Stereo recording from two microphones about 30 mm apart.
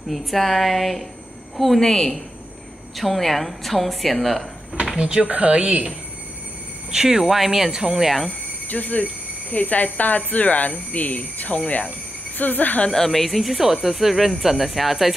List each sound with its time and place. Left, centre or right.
0.1 s a woman's voice: centre
1.8 s a woman's voice: centre
3.0 s a woman's voice: centre
4.9 s speech: right
5.2 s speech: right
6.9 s speech: centre
7.7 s speech: right
8.0 s a woman's voice: centre
8.6 s speech: left
12.4 s speech: left
12.9 s a woman's voice: centre